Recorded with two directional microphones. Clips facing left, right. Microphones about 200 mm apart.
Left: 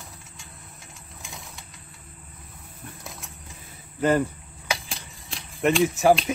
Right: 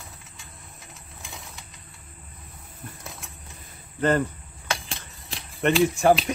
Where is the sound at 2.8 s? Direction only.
Centre (ahead or behind).